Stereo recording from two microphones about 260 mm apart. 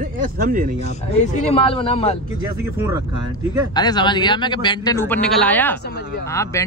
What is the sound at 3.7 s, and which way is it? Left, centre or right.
Speech, centre.